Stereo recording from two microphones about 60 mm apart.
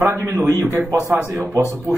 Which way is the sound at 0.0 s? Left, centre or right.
Right.